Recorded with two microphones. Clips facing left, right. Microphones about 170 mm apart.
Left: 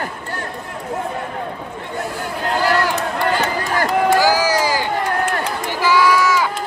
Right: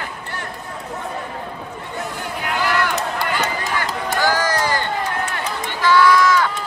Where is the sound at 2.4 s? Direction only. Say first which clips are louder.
Left 3 dB; 40° left (ahead or behind).